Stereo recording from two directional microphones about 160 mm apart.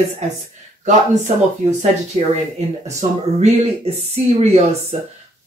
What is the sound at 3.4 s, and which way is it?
Speech, 40° right (ahead or behind).